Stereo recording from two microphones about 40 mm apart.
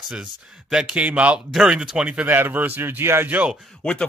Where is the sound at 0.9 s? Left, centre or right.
Right.